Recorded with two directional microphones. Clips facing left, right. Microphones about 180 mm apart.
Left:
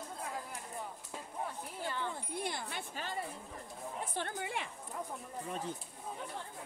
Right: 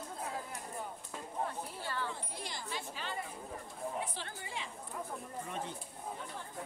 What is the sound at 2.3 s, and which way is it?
A woman's voice, 55° left (ahead or behind).